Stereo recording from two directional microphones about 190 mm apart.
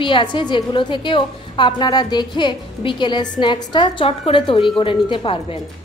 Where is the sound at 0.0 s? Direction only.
25° left (ahead or behind).